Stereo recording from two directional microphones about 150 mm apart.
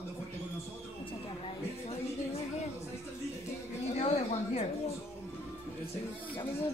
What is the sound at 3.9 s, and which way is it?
Speech, 45° left (ahead or behind).